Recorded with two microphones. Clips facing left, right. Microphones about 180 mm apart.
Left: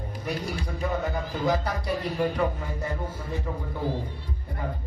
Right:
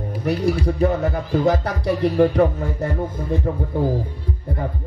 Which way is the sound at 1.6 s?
65° right (ahead or behind).